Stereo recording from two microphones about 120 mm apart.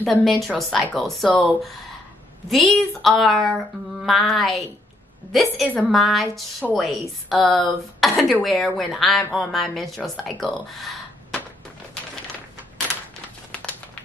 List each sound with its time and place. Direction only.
0.0 s speech: centre (ahead or behind)
2.5 s speech: centre (ahead or behind)
10.4 s gasp: centre (ahead or behind)